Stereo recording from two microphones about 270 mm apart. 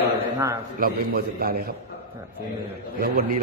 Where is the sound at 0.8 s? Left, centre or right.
Right.